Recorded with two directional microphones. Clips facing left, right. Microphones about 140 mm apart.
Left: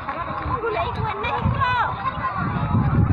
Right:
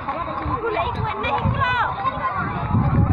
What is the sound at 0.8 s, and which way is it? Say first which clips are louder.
Chatter: right 2 dB; centre (ahead or behind).